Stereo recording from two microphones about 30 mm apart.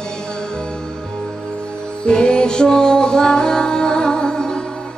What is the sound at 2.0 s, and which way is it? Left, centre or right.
Music, left.